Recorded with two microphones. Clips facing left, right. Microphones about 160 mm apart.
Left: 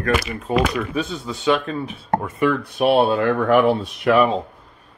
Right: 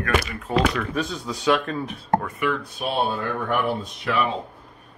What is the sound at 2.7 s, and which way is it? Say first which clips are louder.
Speech: left 9 dB; 70° left (ahead or behind).